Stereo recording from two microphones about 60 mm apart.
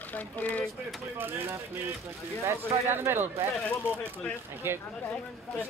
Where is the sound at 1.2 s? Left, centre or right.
Right.